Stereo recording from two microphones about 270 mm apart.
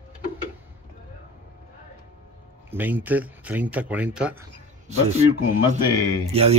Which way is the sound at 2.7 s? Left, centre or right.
Centre.